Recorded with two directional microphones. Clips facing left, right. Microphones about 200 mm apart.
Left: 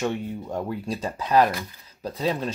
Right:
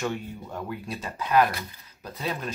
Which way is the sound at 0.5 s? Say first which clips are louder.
Left 4 dB; 30° left (ahead or behind).